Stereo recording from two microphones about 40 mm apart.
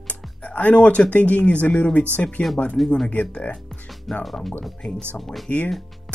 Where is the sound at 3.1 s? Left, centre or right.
Left.